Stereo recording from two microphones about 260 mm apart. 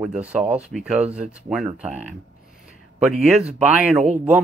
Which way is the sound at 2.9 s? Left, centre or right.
Centre.